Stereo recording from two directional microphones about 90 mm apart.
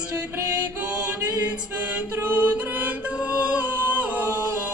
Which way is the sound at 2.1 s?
20° right (ahead or behind).